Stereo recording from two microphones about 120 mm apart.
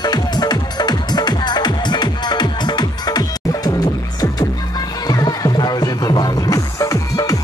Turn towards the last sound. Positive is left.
turn(degrees=30)  # may be behind; listen again after turning